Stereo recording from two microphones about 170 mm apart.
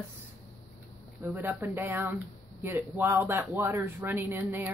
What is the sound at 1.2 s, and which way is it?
Speech, 10° right (ahead or behind).